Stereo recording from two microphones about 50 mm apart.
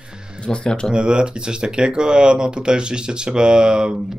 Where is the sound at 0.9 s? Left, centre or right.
Centre.